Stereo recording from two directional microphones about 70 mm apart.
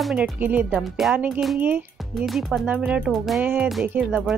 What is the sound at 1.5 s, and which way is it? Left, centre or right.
Speech, right.